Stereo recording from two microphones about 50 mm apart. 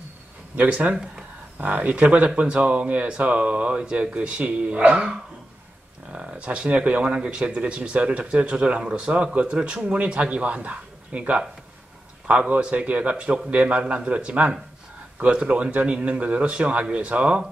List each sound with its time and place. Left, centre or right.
0.6 s speech: right
0.9 s speech: centre
1.6 s speech: right
6.1 s speech: right